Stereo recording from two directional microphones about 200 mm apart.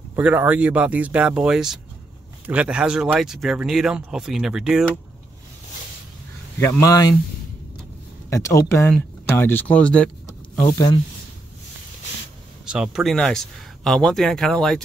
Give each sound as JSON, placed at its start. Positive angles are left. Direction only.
{"t": 0.1, "sound": "speech", "side_deg": -10}
{"t": 6.8, "sound": "speech", "side_deg": 20}
{"t": 8.3, "sound": "speech", "side_deg": 15}
{"t": 12.6, "sound": "speech", "side_deg": -5}